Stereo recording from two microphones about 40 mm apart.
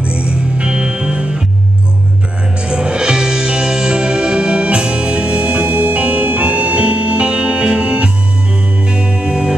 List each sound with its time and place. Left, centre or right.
0.0 s music: right
2.6 s music: right